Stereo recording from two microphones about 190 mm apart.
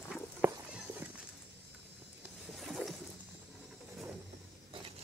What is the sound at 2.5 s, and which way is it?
Boat, centre (ahead or behind).